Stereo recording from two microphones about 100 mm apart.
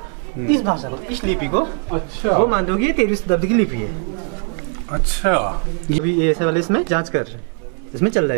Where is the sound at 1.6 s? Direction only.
10° right (ahead or behind).